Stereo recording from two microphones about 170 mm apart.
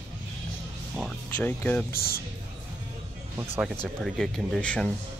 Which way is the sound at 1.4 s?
10° left (ahead or behind).